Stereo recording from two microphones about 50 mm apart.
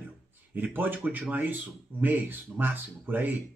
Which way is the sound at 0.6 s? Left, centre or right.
Right.